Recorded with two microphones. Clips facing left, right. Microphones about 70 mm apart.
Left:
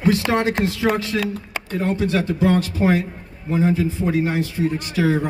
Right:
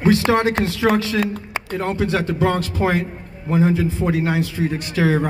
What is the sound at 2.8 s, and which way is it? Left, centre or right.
Speech, right.